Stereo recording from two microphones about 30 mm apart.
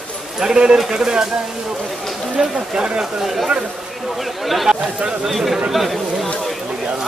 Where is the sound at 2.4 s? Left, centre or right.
Centre.